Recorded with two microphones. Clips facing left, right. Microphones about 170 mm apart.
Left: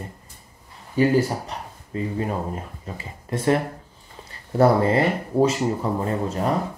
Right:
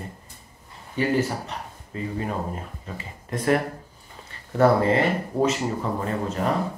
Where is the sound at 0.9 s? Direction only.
35° left (ahead or behind).